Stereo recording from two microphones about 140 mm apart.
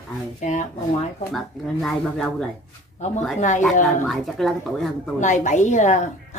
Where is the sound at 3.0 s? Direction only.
55° left (ahead or behind).